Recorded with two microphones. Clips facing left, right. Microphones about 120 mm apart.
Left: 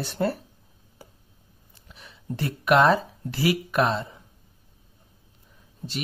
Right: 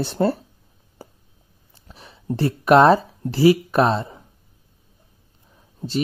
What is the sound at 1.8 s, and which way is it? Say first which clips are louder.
Speech: right 7 dB; 35° right (ahead or behind).